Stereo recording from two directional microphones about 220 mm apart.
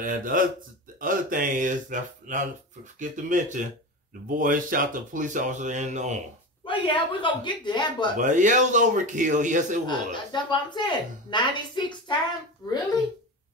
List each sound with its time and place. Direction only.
0.0 s speech: 40° right (ahead or behind)
6.6 s speech: 25° left (ahead or behind)
8.2 s speech: 35° right (ahead or behind)
9.8 s speech: 20° left (ahead or behind)